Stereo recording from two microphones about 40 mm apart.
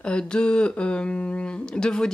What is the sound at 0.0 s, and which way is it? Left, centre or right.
Speech, left.